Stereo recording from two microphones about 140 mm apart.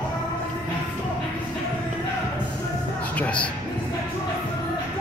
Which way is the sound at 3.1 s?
10° left (ahead or behind).